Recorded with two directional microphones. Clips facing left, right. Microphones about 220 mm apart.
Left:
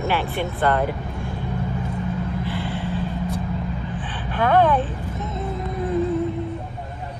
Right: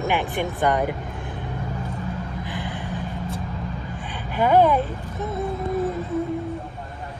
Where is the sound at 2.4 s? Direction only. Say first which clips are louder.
Left 4 dB; 15° right (ahead or behind).